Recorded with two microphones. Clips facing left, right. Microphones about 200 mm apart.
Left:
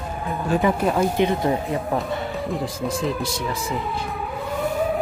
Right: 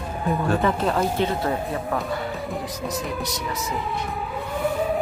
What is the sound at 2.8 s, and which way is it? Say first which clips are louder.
Speech: left 4 dB; 30° left (ahead or behind).